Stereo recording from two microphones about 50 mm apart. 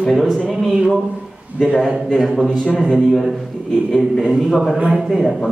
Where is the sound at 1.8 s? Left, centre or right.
Centre.